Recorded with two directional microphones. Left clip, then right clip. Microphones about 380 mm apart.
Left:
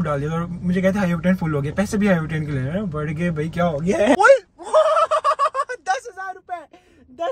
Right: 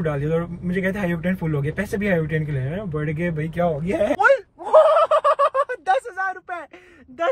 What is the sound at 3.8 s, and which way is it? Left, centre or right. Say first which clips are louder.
Speech: left 4 dB; left.